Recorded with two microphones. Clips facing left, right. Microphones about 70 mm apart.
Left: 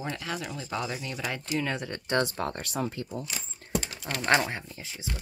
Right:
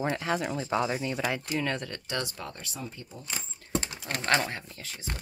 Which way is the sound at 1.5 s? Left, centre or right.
Centre.